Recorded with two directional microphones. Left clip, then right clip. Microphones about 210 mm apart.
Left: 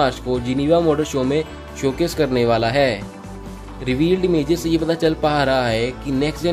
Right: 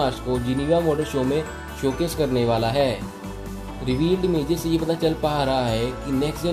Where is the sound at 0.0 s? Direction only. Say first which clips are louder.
Left 4 dB; 25° left (ahead or behind).